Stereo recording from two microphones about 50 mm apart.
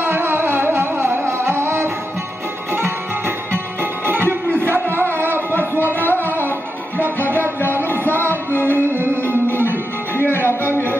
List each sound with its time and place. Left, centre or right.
0.0 s music: right
5.9 s music: left
7.2 s music: right
7.9 s music: left
8.7 s music: right
10.1 s music: left